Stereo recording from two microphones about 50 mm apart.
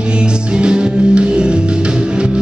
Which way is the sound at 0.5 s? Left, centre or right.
Centre.